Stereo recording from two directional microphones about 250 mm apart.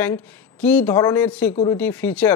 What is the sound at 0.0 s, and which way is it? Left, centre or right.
A woman's voice, centre.